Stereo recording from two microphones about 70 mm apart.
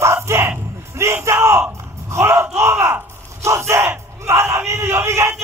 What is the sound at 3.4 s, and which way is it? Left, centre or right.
Battle cry, right.